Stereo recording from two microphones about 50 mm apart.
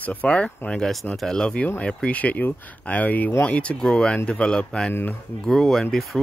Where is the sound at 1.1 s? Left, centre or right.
Centre; by 3.7 s left.